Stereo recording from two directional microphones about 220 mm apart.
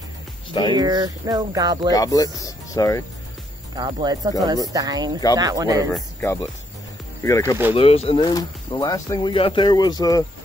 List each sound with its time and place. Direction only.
0.5 s speech: 20° left (ahead or behind)
0.7 s speech: 15° right (ahead or behind)
1.9 s speech: 15° left (ahead or behind)
3.7 s speech: 20° right (ahead or behind)
6.2 s speech: 15° left (ahead or behind)
7.7 s speech: 25° left (ahead or behind)